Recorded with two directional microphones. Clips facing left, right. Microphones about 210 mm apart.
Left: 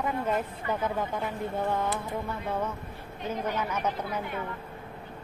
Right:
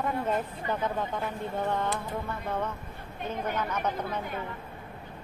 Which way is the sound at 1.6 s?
5° left (ahead or behind).